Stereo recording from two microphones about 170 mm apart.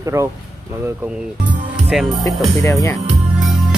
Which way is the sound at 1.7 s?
Centre (ahead or behind).